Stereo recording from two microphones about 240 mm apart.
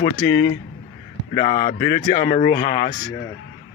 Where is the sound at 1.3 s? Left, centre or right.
Left.